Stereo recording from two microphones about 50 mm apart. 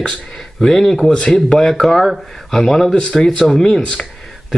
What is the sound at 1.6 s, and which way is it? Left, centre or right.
A man's voice, centre.